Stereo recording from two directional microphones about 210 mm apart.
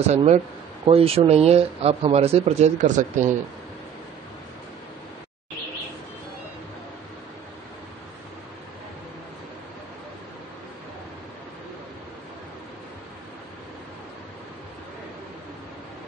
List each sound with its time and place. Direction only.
0.0 s speech: 30° right (ahead or behind)